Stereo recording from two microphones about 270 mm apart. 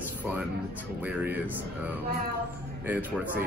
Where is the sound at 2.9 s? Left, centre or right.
Centre.